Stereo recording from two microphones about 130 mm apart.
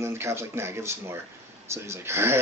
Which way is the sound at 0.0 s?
20° right (ahead or behind).